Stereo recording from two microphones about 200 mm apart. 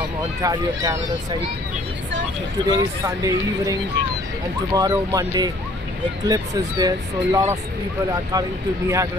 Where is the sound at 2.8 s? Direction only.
15° right (ahead or behind).